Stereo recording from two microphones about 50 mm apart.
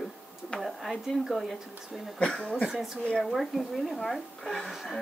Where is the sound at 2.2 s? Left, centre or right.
Centre.